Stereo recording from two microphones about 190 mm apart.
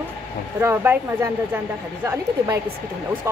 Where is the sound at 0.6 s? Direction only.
15° right (ahead or behind).